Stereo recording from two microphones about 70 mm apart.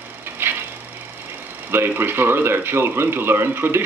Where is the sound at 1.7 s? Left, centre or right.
Right.